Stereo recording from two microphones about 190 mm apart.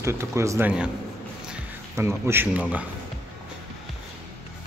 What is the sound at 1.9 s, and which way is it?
Speech, 15° right (ahead or behind).